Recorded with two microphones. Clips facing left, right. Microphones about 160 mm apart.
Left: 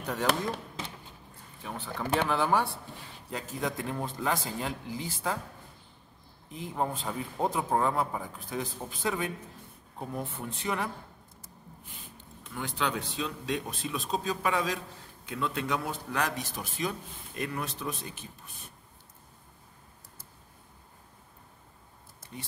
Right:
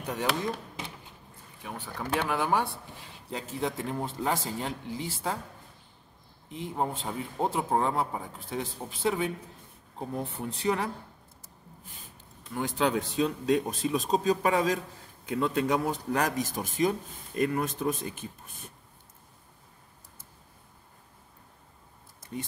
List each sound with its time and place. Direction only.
0.0 s speech: 15° right (ahead or behind)
2.2 s speech: 15° right (ahead or behind)
6.5 s speech: 25° right (ahead or behind)
12.6 s a man's voice: 40° right (ahead or behind)